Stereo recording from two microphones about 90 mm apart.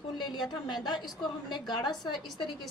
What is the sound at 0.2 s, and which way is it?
A woman's voice, 55° left (ahead or behind).